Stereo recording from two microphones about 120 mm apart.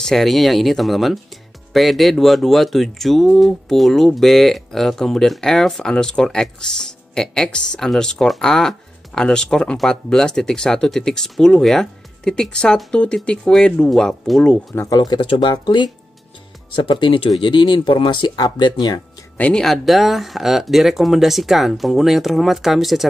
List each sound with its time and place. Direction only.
0.0 s speech: centre (ahead or behind)
14.9 s speech: 35° left (ahead or behind)
19.3 s speech: 10° left (ahead or behind)